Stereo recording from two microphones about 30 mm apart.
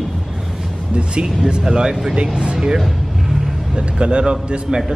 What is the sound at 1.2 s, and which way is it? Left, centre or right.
Speech, right.